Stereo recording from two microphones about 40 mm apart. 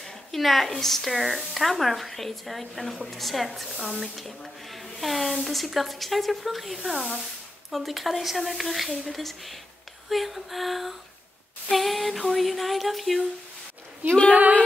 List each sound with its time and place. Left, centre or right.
0.0 s speech: centre
14.3 s speech: right